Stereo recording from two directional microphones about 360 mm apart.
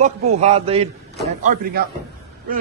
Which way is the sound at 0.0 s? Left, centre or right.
Centre.